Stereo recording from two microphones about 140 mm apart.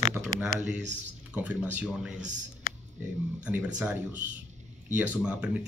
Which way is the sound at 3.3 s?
10° right (ahead or behind).